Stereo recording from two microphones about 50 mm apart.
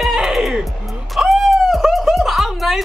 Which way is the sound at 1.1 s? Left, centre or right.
Centre.